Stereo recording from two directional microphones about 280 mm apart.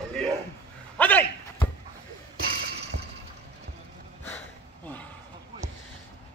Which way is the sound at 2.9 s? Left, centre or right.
Right.